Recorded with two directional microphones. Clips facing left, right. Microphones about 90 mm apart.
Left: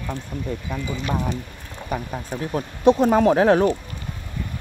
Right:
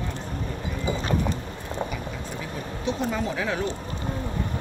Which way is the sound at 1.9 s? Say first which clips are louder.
Left 5 dB; 50° left (ahead or behind).